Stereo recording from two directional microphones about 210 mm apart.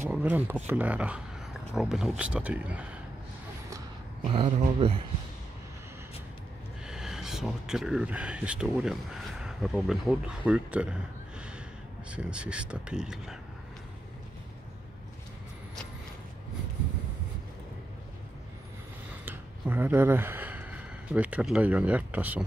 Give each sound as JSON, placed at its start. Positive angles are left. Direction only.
{"t": 0.1, "sound": "speech", "side_deg": -10}
{"t": 4.3, "sound": "speech", "side_deg": -25}
{"t": 6.9, "sound": "speech", "side_deg": 0}
{"t": 19.2, "sound": "speech", "side_deg": -10}